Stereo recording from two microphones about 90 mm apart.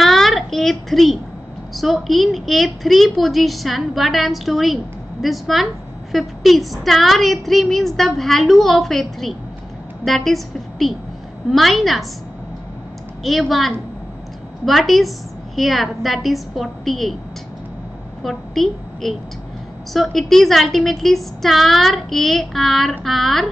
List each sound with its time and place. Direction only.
0.0 s a sound: centre (ahead or behind)
1.8 s a woman's voice: centre (ahead or behind)
13.2 s a woman's voice: centre (ahead or behind)
18.2 s a woman's voice: 5° left (ahead or behind)